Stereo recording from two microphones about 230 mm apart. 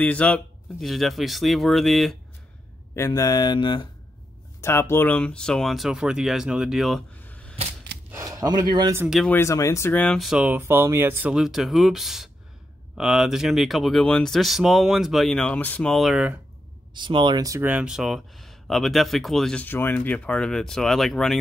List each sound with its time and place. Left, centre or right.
0.0 s speech: centre
3.0 s speech: centre
8.1 s speech: centre
9.0 s speech: centre
9.3 s speech: centre
16.9 s speech: centre